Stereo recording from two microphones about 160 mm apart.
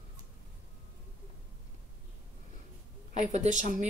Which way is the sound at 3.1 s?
45° right (ahead or behind).